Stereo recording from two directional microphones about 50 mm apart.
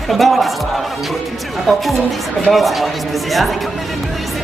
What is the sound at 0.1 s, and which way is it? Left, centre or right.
Speech, centre.